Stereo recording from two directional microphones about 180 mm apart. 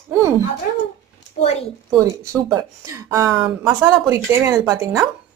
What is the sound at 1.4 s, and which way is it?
Speech, 35° left (ahead or behind).